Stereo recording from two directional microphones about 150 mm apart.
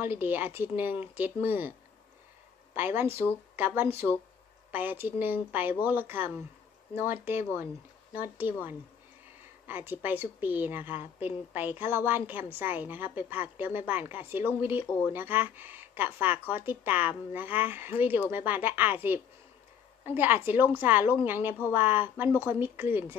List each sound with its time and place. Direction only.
0.0 s a woman's voice: 15° right (ahead or behind)
2.7 s a woman's voice: 15° right (ahead or behind)
9.7 s a woman's voice: 15° right (ahead or behind)